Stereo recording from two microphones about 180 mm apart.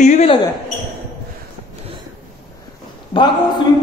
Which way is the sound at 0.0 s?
40° left (ahead or behind).